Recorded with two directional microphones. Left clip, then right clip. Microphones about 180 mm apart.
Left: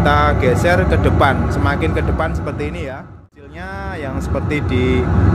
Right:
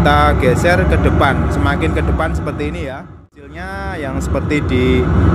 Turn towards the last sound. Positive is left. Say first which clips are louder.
# right 3 dB
turn(degrees=-5)  # may be behind; listen again after turning